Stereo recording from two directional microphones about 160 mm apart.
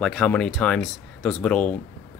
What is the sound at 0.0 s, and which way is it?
Speech, 5° left (ahead or behind).